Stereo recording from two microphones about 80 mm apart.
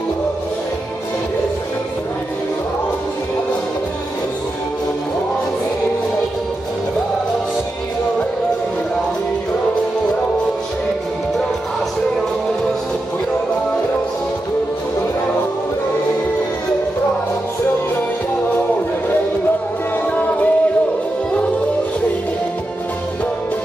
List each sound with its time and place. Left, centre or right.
20.1 s music: centre